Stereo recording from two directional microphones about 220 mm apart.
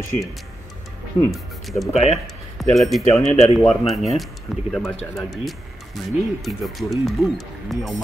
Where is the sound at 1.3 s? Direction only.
Centre (ahead or behind).